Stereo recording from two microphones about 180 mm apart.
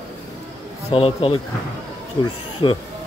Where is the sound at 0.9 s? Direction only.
30° left (ahead or behind).